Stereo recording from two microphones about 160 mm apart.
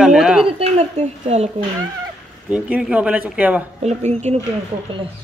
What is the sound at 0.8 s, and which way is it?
Speech, 40° right (ahead or behind).